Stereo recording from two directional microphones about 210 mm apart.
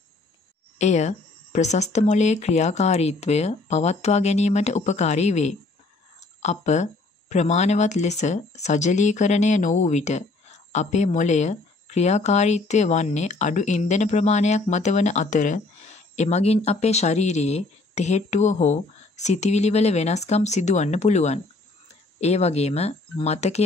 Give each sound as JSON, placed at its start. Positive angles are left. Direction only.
{"t": 0.7, "sound": "speech", "side_deg": 35}